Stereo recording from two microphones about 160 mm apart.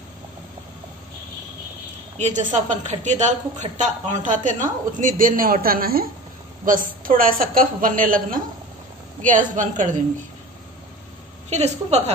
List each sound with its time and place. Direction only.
2.1 s a woman's voice: 45° right (ahead or behind)
11.5 s a woman's voice: 45° right (ahead or behind)